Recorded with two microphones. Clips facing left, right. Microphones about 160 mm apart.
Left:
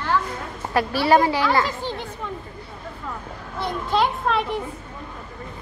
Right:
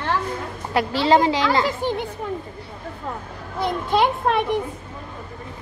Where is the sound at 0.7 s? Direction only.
20° right (ahead or behind).